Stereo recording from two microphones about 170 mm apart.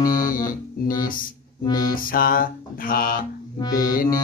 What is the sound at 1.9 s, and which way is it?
Music, 55° left (ahead or behind).